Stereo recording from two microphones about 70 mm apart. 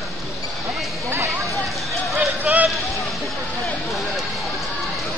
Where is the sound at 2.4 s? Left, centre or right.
Right.